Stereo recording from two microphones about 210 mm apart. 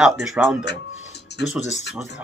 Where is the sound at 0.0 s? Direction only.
5° right (ahead or behind).